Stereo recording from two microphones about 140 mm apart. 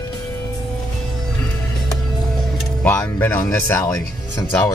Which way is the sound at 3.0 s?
15° left (ahead or behind).